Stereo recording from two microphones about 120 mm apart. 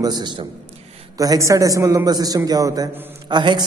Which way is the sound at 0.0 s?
35° right (ahead or behind).